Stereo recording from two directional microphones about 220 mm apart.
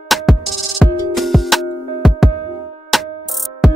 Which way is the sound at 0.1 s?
Centre (ahead or behind).